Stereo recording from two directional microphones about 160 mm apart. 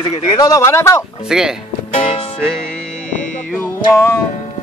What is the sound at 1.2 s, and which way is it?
Speech, 5° right (ahead or behind).